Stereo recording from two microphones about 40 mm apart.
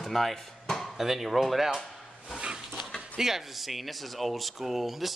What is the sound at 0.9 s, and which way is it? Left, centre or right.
Speech, centre.